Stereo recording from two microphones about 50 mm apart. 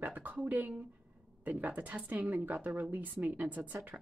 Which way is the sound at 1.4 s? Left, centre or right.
Right.